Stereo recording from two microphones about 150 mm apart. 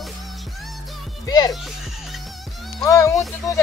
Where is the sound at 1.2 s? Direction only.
25° left (ahead or behind).